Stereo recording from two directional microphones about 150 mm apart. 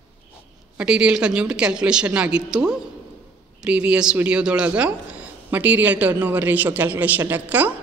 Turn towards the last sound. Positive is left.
turn(degrees=-10)  # may be behind; listen again after turning